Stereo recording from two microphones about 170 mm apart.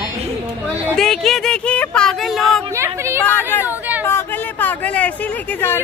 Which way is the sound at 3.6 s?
10° right (ahead or behind).